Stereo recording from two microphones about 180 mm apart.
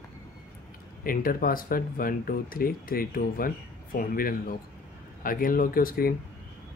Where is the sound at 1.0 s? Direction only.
50° left (ahead or behind).